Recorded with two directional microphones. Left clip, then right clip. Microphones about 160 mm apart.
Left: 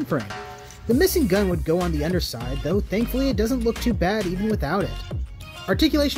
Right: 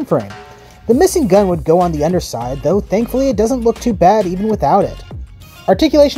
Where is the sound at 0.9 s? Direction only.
15° right (ahead or behind).